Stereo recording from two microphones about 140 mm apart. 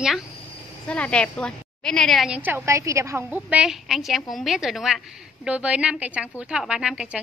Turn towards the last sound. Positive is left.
turn(degrees=-5)  # may be behind; listen again after turning